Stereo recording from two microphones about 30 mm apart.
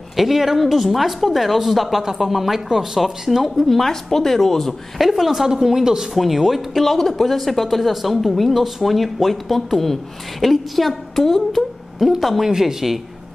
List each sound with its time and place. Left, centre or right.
0.1 s speech: centre
3.6 s speech: centre
4.9 s speech: centre
6.8 s a woman's voice: centre
12.4 s speech: centre